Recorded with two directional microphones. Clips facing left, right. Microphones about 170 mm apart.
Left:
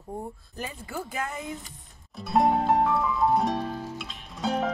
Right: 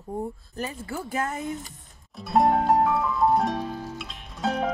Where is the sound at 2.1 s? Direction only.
Centre (ahead or behind).